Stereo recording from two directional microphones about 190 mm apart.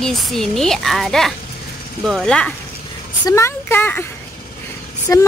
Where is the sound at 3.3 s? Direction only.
15° left (ahead or behind).